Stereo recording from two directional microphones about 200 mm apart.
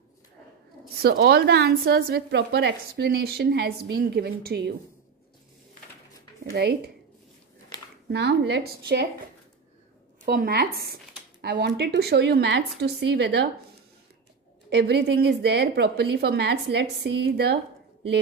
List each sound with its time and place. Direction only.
1.0 s a woman's voice: 50° right (ahead or behind)
6.5 s a woman's voice: 55° right (ahead or behind)
7.7 s a sound: 20° left (ahead or behind)
8.1 s a woman's voice: 55° right (ahead or behind)
10.2 s a woman's voice: 50° right (ahead or behind)
14.7 s a woman's voice: 55° right (ahead or behind)